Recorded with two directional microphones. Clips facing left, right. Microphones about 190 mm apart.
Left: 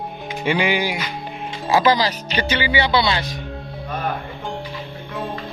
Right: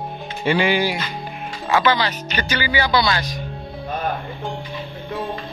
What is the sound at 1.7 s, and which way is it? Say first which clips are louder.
Speech: left 2 dB; 35° left (ahead or behind).